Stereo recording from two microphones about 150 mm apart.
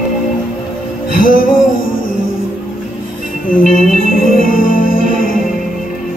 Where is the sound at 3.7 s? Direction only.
65° left (ahead or behind).